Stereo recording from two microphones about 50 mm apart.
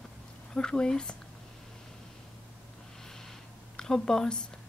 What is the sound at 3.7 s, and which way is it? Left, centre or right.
Speech, centre.